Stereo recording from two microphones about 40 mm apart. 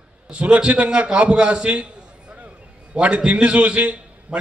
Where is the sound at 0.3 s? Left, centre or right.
Right.